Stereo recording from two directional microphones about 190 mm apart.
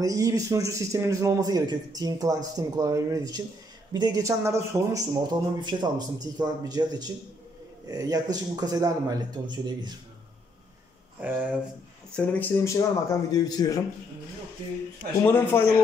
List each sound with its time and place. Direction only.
0.0 s a man's voice: 20° right (ahead or behind)
11.1 s a man's voice: 10° right (ahead or behind)
12.1 s a man's voice: 10° left (ahead or behind)
15.2 s a man's voice: 10° left (ahead or behind)